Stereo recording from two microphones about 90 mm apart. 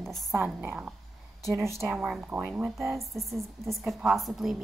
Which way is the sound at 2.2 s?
20° right (ahead or behind).